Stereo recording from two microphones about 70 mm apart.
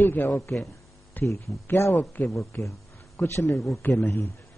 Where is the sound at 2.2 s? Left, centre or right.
Left.